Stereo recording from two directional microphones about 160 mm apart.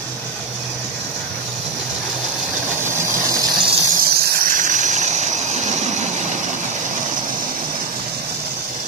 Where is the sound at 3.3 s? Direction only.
25° right (ahead or behind).